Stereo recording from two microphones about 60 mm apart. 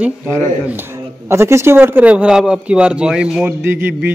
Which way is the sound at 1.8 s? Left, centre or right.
Right.